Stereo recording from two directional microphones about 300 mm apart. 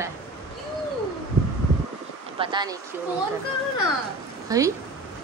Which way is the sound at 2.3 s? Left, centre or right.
Centre.